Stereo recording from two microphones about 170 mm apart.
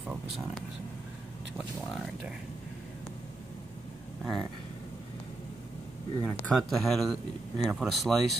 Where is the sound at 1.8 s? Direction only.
Centre (ahead or behind).